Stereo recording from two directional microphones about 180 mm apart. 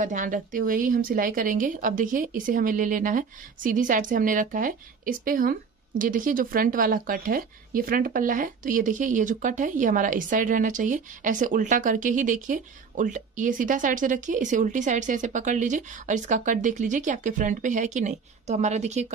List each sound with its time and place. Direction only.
0.0 s a woman's voice: 45° right (ahead or behind)